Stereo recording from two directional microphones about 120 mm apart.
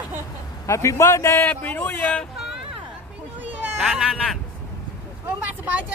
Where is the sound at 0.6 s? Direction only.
25° left (ahead or behind).